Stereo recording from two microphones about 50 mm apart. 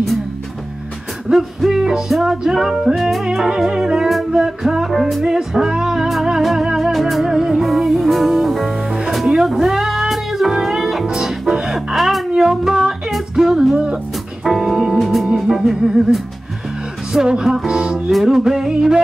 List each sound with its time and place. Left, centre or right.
1.3 s music: centre
12.4 s a sound: centre
13.1 s music: centre